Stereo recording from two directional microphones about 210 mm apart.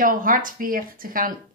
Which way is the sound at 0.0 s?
40° right (ahead or behind).